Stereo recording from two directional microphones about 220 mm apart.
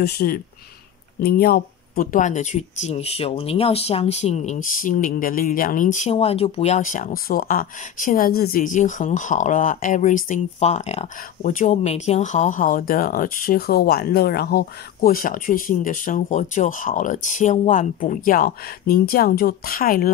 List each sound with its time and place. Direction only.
0.0 s speech: 45° left (ahead or behind)